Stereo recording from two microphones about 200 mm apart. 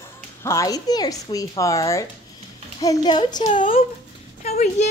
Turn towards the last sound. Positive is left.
turn(degrees=35)  # may be behind; listen again after turning